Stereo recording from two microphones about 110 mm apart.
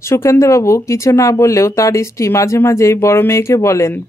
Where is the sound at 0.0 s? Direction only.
25° left (ahead or behind).